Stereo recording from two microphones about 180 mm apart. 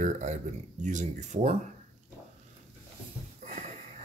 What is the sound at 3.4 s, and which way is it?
Sniff, 40° right (ahead or behind).